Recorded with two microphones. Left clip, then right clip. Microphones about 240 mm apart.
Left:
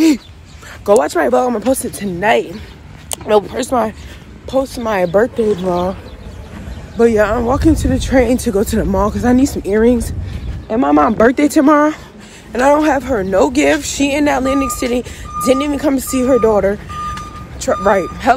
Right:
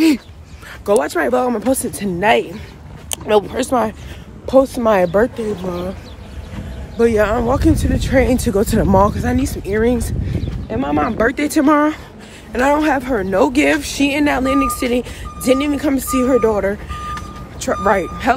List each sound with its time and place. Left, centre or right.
0.8 s speech: centre
4.5 s speech: right
5.4 s speech: centre
7.0 s speech: centre
9.1 s speech: centre
10.7 s speech: left
11.1 s speech: centre